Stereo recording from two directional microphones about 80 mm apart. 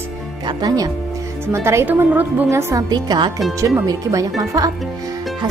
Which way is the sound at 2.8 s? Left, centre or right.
Right.